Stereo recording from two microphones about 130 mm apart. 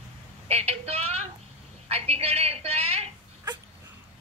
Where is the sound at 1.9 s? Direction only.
50° right (ahead or behind).